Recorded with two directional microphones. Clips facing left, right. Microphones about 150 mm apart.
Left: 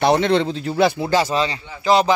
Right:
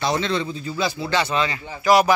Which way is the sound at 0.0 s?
60° left (ahead or behind).